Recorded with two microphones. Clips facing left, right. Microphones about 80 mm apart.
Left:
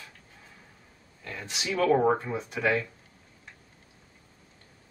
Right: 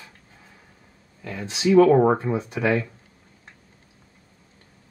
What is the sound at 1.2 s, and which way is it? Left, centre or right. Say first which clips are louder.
Speech: right 10 dB; centre.